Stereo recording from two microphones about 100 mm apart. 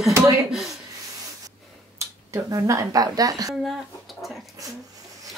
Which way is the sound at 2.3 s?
30° right (ahead or behind).